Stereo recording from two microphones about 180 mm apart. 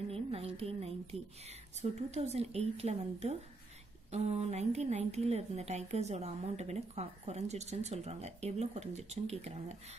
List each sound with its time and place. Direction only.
0.1 s music: 35° right (ahead or behind)
1.8 s a woman's voice: 40° right (ahead or behind)